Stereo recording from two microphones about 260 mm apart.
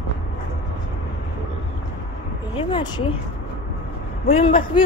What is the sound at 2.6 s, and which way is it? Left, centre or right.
Speech, centre.